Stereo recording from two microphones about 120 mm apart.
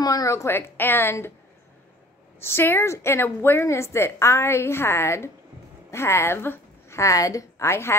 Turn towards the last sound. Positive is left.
turn(degrees=20)  # may be behind; listen again after turning